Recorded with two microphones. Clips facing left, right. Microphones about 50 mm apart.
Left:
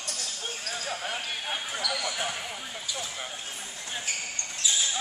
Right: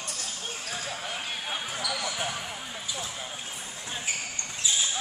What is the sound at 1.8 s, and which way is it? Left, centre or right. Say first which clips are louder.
Basketball bounce: left 1 dB; centre.